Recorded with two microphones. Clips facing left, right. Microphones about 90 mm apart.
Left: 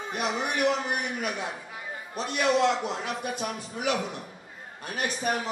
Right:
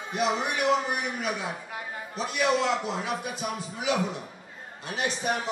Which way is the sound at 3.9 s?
55° left (ahead or behind).